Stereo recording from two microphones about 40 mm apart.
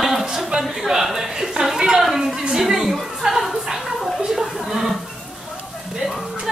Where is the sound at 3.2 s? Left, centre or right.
Centre.